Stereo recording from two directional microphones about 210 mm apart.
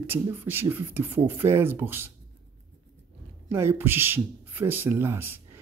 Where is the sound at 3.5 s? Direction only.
10° right (ahead or behind).